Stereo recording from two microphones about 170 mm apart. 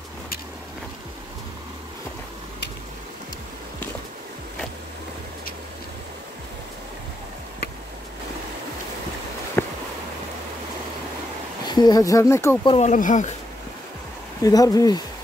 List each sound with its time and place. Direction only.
9.6 s a sound: 15° left (ahead or behind)
11.6 s speech: 25° left (ahead or behind)
12.6 s speech: 35° left (ahead or behind)
12.9 s speech: 50° left (ahead or behind)
14.4 s speech: 20° left (ahead or behind)